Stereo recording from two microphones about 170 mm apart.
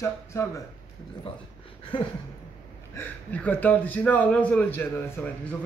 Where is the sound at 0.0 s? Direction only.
15° left (ahead or behind).